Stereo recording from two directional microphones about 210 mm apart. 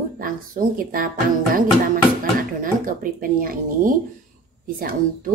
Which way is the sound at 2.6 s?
40° right (ahead or behind).